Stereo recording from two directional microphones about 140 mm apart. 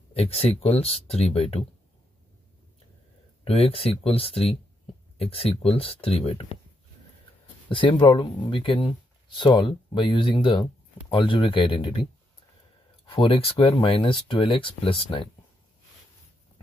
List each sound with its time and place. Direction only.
0.1 s speech: 45° left (ahead or behind)
3.4 s speech: 45° left (ahead or behind)
7.7 s speech: 35° left (ahead or behind)
13.0 s speech: 40° left (ahead or behind)